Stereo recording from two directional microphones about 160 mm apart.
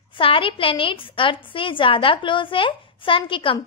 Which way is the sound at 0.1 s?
35° left (ahead or behind).